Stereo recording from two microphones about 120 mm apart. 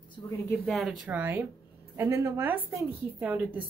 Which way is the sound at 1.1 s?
15° right (ahead or behind).